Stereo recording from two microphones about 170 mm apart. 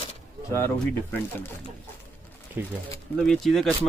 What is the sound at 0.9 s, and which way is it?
Speech, 10° left (ahead or behind).